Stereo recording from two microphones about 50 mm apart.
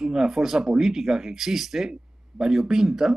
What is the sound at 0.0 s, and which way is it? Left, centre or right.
Speech, centre.